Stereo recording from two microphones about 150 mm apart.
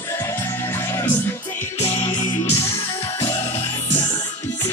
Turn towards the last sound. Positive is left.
turn(degrees=35)  # may be behind; listen again after turning